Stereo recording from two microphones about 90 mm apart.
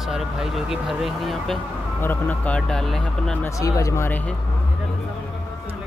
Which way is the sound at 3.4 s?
40° left (ahead or behind).